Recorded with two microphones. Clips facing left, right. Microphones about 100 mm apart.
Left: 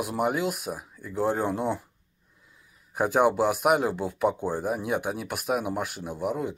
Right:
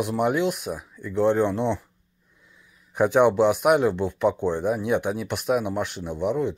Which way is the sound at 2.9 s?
5° left (ahead or behind).